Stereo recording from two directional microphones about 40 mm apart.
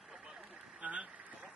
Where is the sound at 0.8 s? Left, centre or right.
Right.